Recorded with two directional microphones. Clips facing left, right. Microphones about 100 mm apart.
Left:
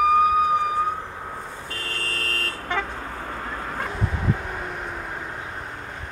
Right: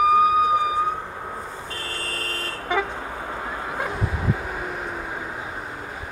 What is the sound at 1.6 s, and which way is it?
Vehicle, 15° right (ahead or behind).